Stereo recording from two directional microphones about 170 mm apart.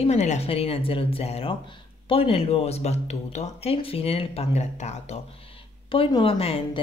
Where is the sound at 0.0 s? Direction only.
40° left (ahead or behind).